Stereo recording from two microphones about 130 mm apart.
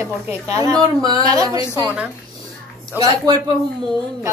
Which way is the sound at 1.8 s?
10° right (ahead or behind).